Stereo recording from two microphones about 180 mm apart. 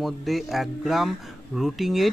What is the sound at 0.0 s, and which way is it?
Speech, centre (ahead or behind).